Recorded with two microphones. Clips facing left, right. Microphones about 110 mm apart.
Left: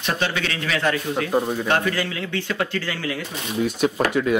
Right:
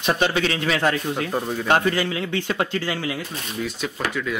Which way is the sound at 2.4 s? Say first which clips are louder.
Right 1 dB; 35° right (ahead or behind).